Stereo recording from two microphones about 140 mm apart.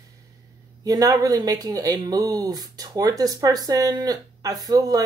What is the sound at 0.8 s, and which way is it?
Speech, 25° right (ahead or behind).